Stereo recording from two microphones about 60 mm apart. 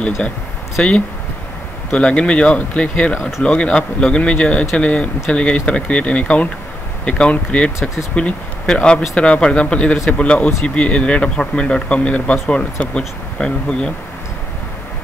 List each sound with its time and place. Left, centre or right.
0.8 s speech: centre
3.2 s speech: centre
3.4 s speech: centre